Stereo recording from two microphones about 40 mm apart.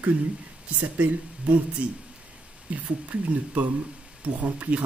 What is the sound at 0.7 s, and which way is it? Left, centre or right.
Speech, right.